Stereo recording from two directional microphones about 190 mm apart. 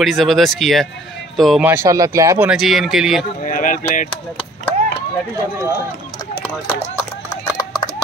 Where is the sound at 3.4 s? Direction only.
45° left (ahead or behind).